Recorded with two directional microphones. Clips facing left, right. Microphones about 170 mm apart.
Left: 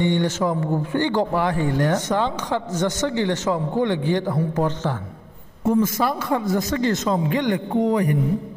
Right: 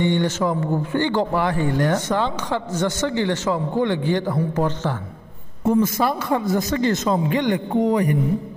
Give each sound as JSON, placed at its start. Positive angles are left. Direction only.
{"t": 0.0, "sound": "a man's voice", "side_deg": 10}
{"t": 5.8, "sound": "speech", "side_deg": -25}